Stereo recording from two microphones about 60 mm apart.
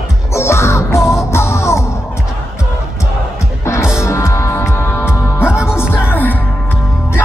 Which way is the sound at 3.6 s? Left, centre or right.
Left.